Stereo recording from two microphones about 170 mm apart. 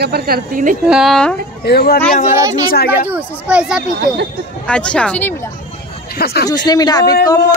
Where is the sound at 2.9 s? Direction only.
10° right (ahead or behind).